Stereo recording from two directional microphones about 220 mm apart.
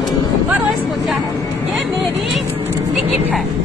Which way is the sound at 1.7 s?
Centre (ahead or behind).